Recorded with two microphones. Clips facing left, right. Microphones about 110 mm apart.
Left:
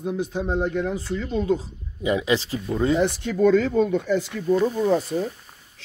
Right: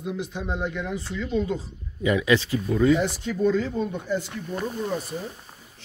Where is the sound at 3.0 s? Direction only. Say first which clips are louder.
Left 4 dB; 65° left (ahead or behind); by 4.4 s 90° left.